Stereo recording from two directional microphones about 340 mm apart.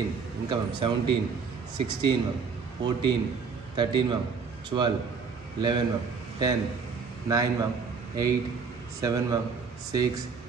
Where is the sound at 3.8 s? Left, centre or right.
Centre.